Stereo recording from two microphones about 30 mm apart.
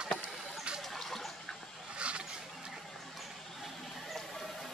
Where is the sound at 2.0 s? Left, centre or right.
Right.